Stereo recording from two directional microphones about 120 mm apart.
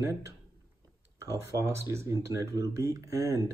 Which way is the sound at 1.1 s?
25° right (ahead or behind).